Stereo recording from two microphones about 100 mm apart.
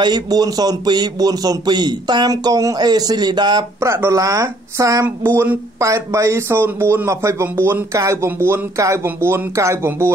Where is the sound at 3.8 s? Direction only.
30° right (ahead or behind).